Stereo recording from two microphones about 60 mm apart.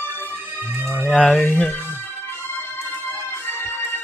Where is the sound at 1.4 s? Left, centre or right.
Left.